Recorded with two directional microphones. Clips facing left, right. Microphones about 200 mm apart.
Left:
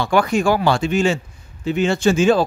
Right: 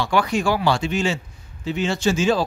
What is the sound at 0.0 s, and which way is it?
A man's voice, 50° left (ahead or behind).